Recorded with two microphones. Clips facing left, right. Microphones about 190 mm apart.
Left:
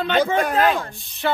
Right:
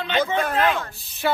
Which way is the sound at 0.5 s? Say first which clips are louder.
Left 2 dB; 35° left (ahead or behind).